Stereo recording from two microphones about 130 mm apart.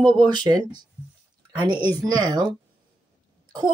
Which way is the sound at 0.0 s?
5° left (ahead or behind).